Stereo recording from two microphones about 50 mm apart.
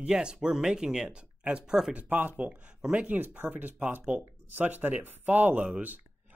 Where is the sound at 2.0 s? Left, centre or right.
Right.